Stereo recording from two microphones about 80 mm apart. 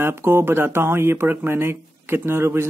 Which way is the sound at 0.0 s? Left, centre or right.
Right.